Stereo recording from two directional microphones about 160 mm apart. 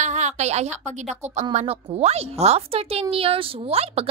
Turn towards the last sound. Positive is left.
turn(degrees=-40)  # may be behind; listen again after turning